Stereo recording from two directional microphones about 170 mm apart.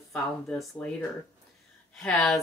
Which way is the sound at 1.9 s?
5° left (ahead or behind).